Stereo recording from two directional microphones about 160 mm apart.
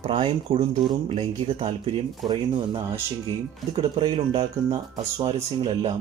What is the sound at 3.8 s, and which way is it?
Speech, 30° right (ahead or behind).